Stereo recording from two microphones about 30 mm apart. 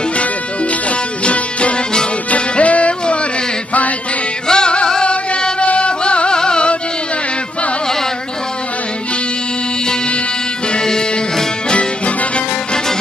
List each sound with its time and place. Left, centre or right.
1.2 s music: left
4.5 s music: left
5.0 s music: left
10.7 s music: left